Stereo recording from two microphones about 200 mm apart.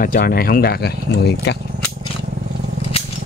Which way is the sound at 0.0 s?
45° left (ahead or behind).